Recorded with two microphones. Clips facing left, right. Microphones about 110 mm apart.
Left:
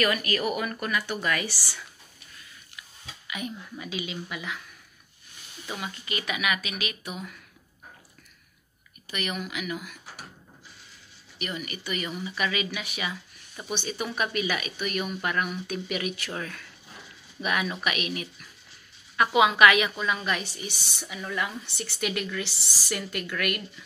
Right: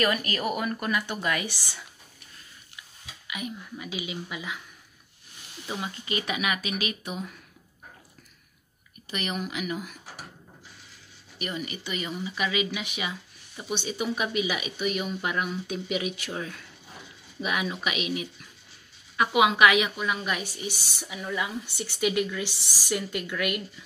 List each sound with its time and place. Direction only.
0.0 s speech: 25° right (ahead or behind)
3.3 s a woman's voice: 5° right (ahead or behind)
5.7 s speech: 25° right (ahead or behind)
9.1 s speech: 30° right (ahead or behind)
11.3 s a woman's voice: 30° right (ahead or behind); by 23.6 s 15° right (ahead or behind)